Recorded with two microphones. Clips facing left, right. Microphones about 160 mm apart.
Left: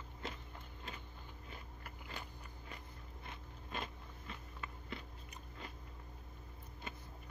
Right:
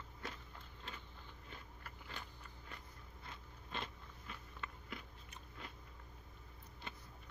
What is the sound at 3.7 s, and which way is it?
Biting, 5° left (ahead or behind).